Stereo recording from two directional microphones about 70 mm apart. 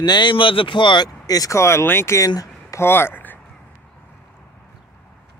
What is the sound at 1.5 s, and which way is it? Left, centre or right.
Speech, left.